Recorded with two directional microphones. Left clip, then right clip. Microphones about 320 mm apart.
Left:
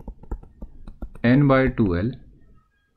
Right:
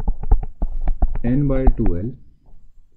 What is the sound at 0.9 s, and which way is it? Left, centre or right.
Speech, centre.